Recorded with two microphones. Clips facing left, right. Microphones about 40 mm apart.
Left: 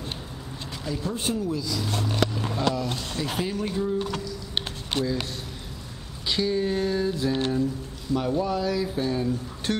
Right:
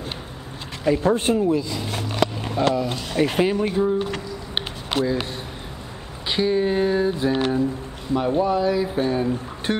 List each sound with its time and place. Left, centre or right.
0.8 s speech: right; by 3.2 s centre
3.3 s speech: right
3.5 s speech: right
6.2 s speech: right